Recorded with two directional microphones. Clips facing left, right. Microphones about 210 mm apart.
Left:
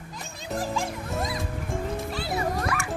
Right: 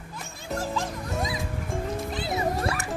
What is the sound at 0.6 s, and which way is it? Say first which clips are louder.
Music: left 1 dB; 10° left (ahead or behind).